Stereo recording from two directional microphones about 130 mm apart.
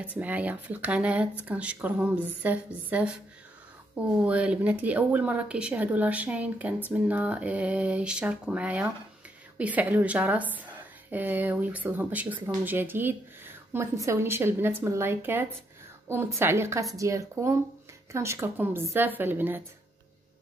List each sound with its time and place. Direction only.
0.0 s speech: 10° right (ahead or behind)
4.2 s a woman's voice: 10° right (ahead or behind)